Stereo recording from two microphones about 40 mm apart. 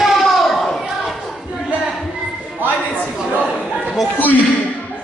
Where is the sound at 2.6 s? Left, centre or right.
Right.